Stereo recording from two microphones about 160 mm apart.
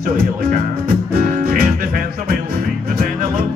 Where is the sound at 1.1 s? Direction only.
55° right (ahead or behind).